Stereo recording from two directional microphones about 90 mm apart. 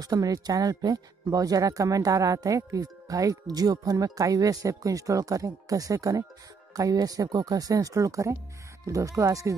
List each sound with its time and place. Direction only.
0.0 s speech: 45° right (ahead or behind)